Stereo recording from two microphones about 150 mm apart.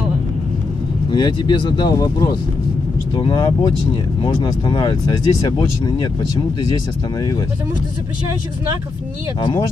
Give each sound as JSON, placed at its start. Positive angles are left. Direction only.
{"t": 1.1, "sound": "speech", "side_deg": 30}
{"t": 9.4, "sound": "speech", "side_deg": 30}